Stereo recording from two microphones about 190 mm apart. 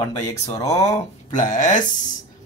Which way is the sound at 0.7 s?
35° left (ahead or behind).